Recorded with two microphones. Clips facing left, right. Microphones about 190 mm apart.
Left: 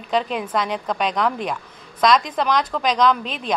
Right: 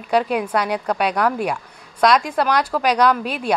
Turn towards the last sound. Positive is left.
turn(degrees=-10)  # may be behind; listen again after turning